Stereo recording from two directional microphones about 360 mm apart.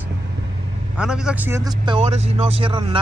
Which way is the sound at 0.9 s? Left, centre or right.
Centre.